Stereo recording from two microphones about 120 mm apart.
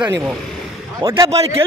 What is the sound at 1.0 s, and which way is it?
Speech, 30° right (ahead or behind).